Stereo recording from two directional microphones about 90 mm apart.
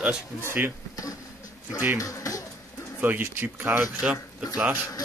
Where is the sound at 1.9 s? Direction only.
40° left (ahead or behind).